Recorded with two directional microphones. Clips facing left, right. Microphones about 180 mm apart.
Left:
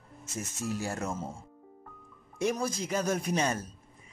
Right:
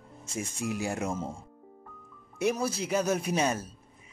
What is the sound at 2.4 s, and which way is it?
Speech, 10° right (ahead or behind).